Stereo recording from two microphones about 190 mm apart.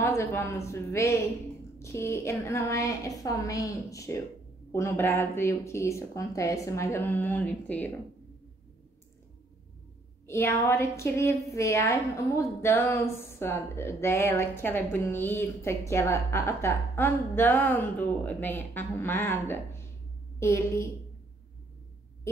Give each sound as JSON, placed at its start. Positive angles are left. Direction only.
{"t": 0.0, "sound": "a woman's voice", "side_deg": 15}
{"t": 10.2, "sound": "a woman's voice", "side_deg": 10}